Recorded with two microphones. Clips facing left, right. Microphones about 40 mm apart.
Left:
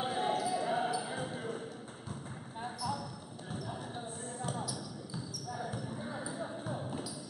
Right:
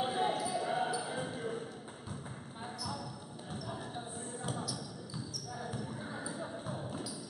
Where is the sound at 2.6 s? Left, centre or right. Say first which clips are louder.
Left 4 dB; centre.